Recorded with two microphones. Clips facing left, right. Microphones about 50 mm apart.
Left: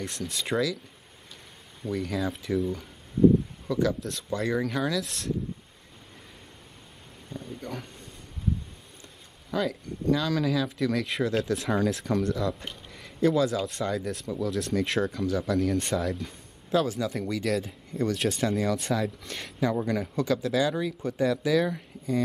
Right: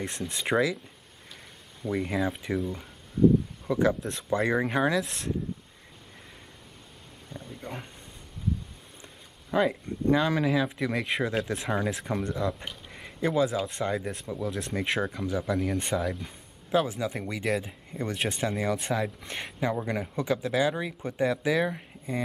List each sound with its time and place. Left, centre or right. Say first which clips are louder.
0.0 s speech: right 1 dB; right
1.9 s speech: right 1 dB; right
3.6 s speech: right 2 dB; right
7.3 s a sound: left 3 dB; centre
7.6 s speech: even; centre
9.5 s speech: right 3 dB; right
11.5 s speech: left 3 dB; centre
12.9 s a sound: left 3 dB; right
13.6 s speech: even; right